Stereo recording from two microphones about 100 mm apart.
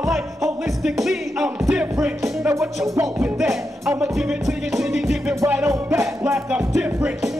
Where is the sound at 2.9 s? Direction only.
35° right (ahead or behind).